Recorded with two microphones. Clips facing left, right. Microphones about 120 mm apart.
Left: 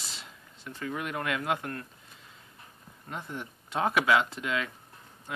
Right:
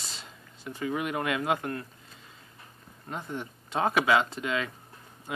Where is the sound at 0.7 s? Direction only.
10° right (ahead or behind).